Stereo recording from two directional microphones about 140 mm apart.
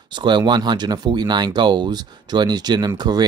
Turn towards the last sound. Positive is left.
turn(degrees=-30)  # may be behind; listen again after turning